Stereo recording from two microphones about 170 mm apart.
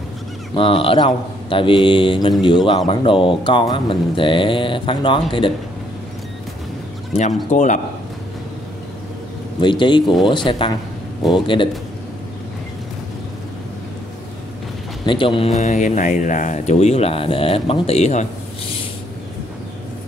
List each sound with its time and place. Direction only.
0.6 s speech: 30° left (ahead or behind)
7.4 s a man's voice: 45° left (ahead or behind)
9.6 s speech: 25° left (ahead or behind)
15.0 s speech: 30° left (ahead or behind)